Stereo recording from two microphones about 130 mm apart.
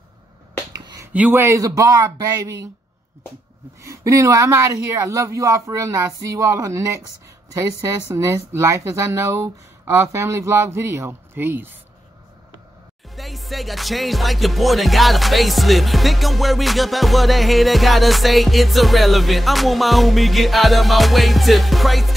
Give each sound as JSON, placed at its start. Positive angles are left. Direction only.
{"t": 0.7, "sound": "a sound", "side_deg": -30}
{"t": 1.1, "sound": "speech", "side_deg": -15}
{"t": 3.8, "sound": "speech", "side_deg": -25}
{"t": 13.1, "sound": "music", "side_deg": 0}